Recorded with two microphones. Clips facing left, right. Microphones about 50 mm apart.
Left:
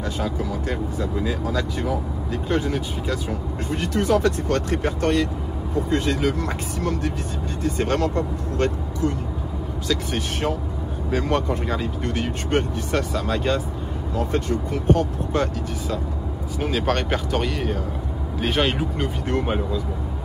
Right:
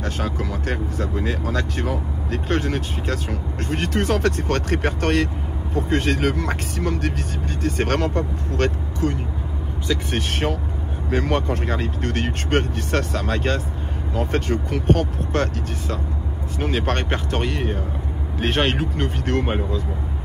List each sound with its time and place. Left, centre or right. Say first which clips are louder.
0.7 s speech: even; right
7.6 s speech: even; right
11.1 s speech: right 1 dB; right
12.0 s speech: right 1 dB; right
16.9 s speech: left 1 dB; centre
18.7 s speech: right 1 dB; right